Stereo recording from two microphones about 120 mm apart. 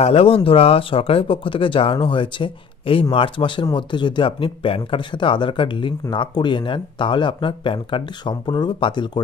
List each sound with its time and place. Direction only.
0.0 s speech: 55° left (ahead or behind)